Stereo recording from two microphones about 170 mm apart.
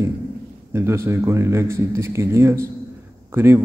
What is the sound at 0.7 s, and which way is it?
A man's voice, 15° right (ahead or behind).